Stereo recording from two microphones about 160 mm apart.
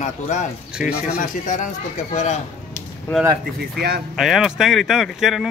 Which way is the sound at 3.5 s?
80° right.